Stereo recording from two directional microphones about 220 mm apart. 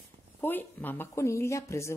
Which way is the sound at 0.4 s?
10° left (ahead or behind).